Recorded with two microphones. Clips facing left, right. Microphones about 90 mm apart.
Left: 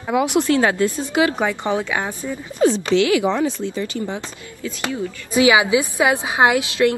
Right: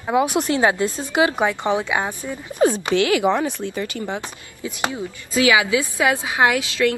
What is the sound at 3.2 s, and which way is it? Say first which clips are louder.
Speech: even; 60° right (ahead or behind).